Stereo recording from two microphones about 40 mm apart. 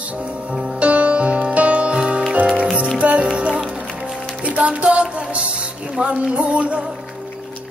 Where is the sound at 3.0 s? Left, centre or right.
Right.